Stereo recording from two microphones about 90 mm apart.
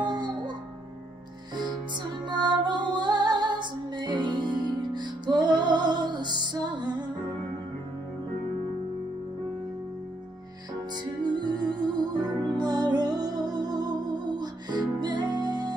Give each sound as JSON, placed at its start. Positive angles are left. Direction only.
{"t": 0.0, "sound": "music", "side_deg": -55}
{"t": 2.2, "sound": "music", "side_deg": -60}
{"t": 11.2, "sound": "music", "side_deg": -55}